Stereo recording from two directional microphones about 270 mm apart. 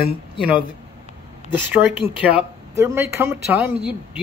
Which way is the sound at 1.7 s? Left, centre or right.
Centre.